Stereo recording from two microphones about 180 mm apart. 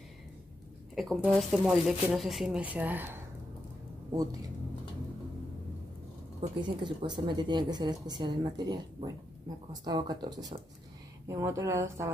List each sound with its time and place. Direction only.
0.9 s a woman's voice: centre (ahead or behind); by 4.5 s 20° right (ahead or behind)
6.8 s a woman's voice: 25° right (ahead or behind)